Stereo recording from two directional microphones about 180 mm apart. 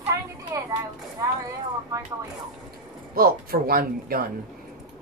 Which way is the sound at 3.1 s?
55° right (ahead or behind).